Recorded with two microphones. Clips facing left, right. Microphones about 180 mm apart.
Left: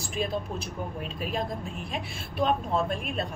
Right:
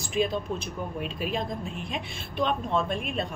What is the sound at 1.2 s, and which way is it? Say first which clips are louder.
A woman's voice: even; centre (ahead or behind).